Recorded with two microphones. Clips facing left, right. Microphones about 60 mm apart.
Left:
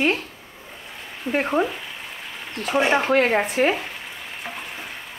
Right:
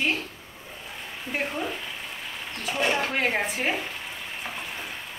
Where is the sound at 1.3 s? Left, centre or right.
Left.